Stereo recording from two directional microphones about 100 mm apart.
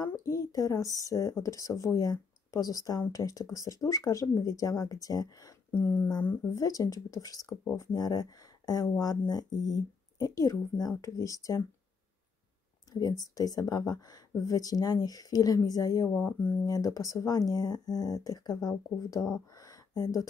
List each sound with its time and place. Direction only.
0.0 s speech: 35° left (ahead or behind)
5.7 s speech: 20° left (ahead or behind)
6.4 s speech: 35° left (ahead or behind)
12.9 s a sound: 35° left (ahead or behind)
13.2 s speech: 40° left (ahead or behind)
16.2 s speech: 20° left (ahead or behind)
16.6 s speech: 35° left (ahead or behind)